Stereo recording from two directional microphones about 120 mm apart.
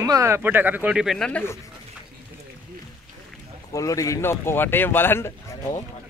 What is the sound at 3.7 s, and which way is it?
Speech, 30° left (ahead or behind).